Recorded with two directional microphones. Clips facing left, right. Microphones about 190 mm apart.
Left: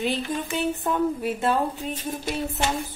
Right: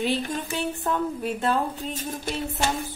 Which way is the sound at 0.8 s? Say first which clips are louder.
Left 1 dB; 10° left (ahead or behind).